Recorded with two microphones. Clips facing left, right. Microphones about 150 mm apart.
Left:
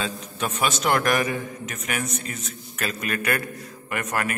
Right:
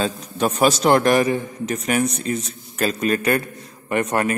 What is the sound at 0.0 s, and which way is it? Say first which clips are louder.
A man's voice: right 7 dB; 40° right (ahead or behind).